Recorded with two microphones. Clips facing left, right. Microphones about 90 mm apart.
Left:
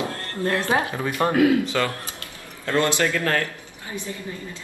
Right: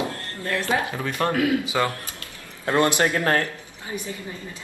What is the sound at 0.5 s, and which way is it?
Speech, 25° left (ahead or behind).